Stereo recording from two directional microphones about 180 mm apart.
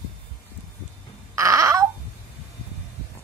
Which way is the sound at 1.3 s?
15° right (ahead or behind).